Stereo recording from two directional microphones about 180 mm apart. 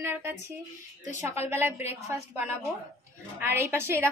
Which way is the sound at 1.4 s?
15° right (ahead or behind).